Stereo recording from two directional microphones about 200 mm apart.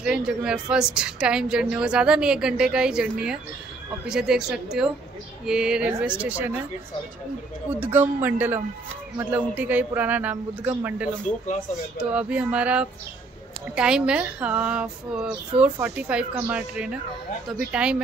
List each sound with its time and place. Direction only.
0.0 s a woman's voice: 5° right (ahead or behind)
7.7 s a man's voice: 10° right (ahead or behind)
11.3 s speech: 40° left (ahead or behind)
12.0 s a man's voice: 5° right (ahead or behind)